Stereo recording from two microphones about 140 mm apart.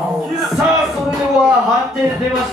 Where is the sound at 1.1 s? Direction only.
Centre (ahead or behind).